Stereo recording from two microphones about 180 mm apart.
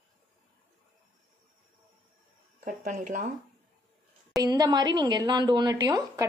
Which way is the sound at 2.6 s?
50° right (ahead or behind).